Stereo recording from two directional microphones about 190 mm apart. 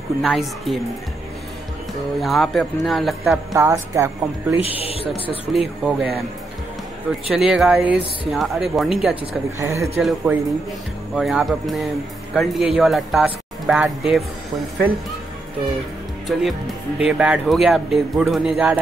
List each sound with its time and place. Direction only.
0.2 s speech: centre (ahead or behind)
2.1 s speech: centre (ahead or behind)
3.5 s a woman's voice: 15° right (ahead or behind)
4.6 s speech: 30° left (ahead or behind)
5.5 s speech: centre (ahead or behind)
7.2 s speech: centre (ahead or behind)
9.6 s a woman's voice: 15° right (ahead or behind)
11.1 s speech: centre (ahead or behind)
16.3 s speech: centre (ahead or behind)